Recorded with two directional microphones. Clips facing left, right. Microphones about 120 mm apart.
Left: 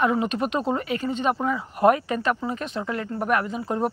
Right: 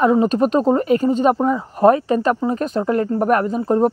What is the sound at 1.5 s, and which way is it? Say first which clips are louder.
Speech: right 5 dB; 30° right (ahead or behind).